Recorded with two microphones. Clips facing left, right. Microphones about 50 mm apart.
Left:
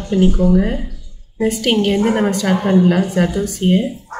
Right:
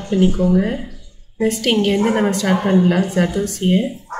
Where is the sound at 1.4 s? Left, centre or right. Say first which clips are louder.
Left 1 dB; centre.